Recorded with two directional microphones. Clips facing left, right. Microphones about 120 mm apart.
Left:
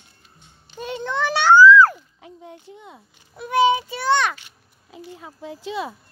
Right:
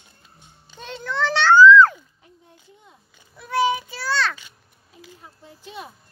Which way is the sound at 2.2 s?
90° left.